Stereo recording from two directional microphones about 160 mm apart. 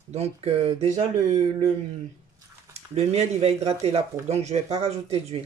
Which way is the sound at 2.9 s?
45° right (ahead or behind).